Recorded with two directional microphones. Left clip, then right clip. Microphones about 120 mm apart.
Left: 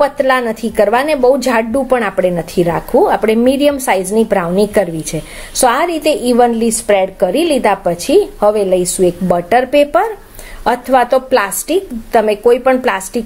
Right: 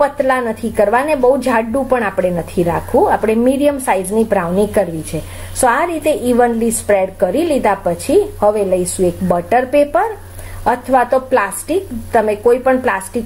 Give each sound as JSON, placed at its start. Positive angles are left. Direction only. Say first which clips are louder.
{"t": 0.0, "sound": "a woman's voice", "louder": "left 2 dB", "side_deg": 15}